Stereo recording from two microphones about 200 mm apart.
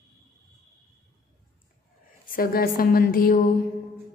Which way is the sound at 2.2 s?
45° left (ahead or behind).